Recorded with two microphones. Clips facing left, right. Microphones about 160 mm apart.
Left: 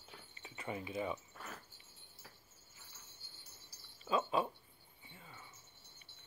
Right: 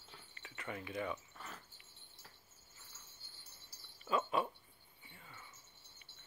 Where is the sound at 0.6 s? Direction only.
25° left (ahead or behind).